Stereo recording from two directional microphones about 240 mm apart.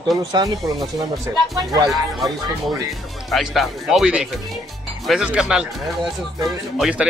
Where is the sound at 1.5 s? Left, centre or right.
Centre.